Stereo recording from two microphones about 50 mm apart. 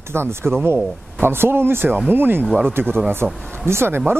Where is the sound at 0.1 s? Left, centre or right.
Right.